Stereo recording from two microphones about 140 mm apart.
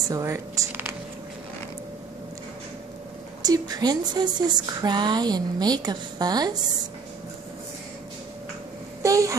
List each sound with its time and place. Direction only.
0.1 s speech: 20° right (ahead or behind)
3.4 s speech: 30° right (ahead or behind)
9.0 s a sound: 25° right (ahead or behind)